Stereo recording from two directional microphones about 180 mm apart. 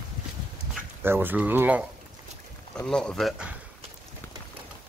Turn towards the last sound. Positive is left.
turn(degrees=-5)  # may be behind; listen again after turning